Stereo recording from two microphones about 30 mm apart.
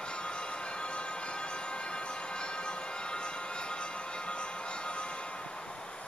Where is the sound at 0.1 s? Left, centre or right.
Left.